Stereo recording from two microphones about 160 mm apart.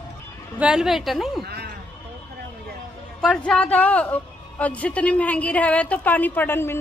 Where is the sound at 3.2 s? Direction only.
5° left (ahead or behind).